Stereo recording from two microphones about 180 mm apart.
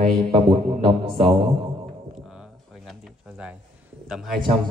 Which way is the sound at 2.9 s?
5° right (ahead or behind).